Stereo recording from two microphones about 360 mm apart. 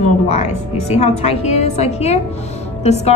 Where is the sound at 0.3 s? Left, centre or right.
Centre.